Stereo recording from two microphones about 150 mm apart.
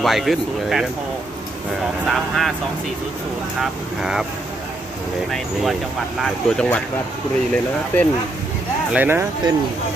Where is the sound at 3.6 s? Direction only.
5° right (ahead or behind).